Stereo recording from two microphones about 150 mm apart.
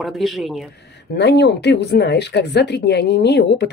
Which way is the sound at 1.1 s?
90° left.